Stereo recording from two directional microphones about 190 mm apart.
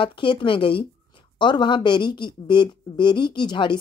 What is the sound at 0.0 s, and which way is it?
A woman's voice, 25° left (ahead or behind).